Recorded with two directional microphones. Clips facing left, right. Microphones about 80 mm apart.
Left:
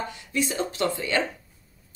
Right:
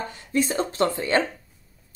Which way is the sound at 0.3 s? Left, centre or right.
Right.